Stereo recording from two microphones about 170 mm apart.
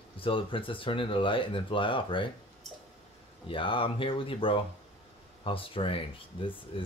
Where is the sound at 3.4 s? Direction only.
30° left (ahead or behind).